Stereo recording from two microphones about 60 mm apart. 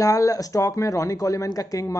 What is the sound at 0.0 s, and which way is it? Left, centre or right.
Speech, left.